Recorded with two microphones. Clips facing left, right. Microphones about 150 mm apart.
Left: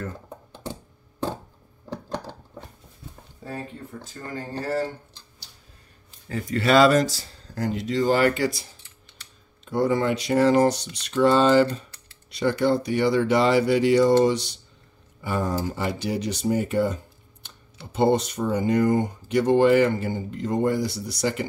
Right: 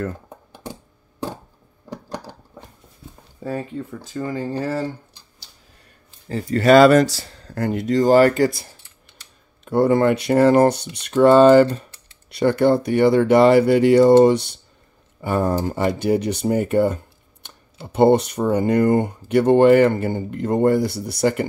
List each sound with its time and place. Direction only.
1.9 s a sound: 10° right (ahead or behind)
6.2 s speech: 35° right (ahead or behind)
9.7 s speech: 55° right (ahead or behind)